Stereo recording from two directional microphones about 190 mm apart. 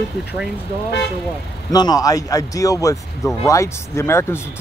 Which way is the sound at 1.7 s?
20° left (ahead or behind).